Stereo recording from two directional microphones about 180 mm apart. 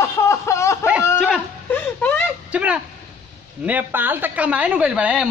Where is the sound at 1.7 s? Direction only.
10° left (ahead or behind).